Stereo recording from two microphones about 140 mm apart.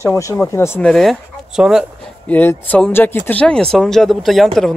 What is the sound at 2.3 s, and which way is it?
Speech, 10° left (ahead or behind).